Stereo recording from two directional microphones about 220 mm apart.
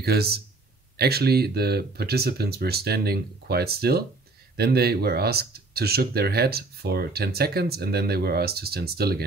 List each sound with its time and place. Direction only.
0.0 s speech: 45° right (ahead or behind)